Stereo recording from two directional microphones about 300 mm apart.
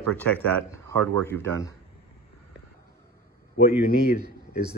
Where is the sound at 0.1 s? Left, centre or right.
Centre.